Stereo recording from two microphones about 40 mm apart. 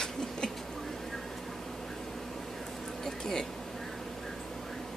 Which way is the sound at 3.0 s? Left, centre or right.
Centre.